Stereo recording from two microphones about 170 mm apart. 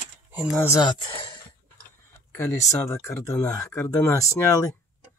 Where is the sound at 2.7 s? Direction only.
15° left (ahead or behind).